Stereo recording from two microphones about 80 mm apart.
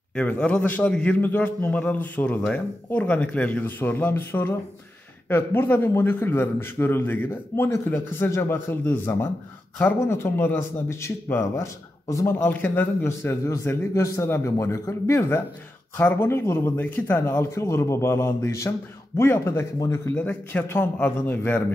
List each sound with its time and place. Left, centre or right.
0.1 s a man's voice: centre